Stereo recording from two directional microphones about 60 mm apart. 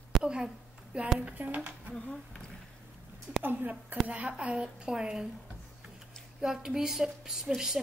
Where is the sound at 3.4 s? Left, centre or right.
Right.